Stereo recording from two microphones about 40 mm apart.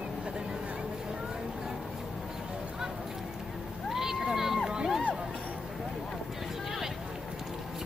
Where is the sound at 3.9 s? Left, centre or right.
Centre.